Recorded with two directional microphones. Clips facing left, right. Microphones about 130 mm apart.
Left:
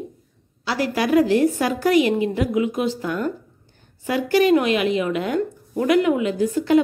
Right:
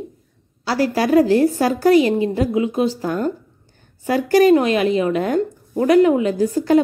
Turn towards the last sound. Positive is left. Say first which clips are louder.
# right 2 dB
turn(degrees=-40)  # may be behind; listen again after turning